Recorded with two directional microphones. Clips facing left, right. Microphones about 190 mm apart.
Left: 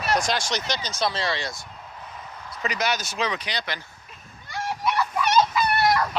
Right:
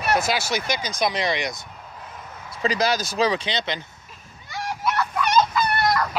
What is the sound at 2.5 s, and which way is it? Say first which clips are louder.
Speech: right 5 dB; 30° right (ahead or behind).